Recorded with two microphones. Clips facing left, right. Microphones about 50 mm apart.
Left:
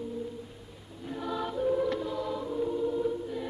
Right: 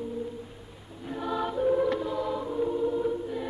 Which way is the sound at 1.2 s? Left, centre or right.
Right.